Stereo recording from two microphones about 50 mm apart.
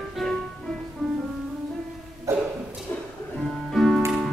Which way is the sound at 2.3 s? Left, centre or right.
Right.